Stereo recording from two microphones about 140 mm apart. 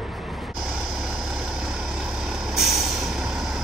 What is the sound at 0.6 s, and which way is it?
Vehicle, 5° right (ahead or behind).